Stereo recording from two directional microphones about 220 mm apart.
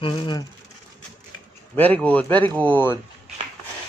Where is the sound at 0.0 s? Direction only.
20° left (ahead or behind).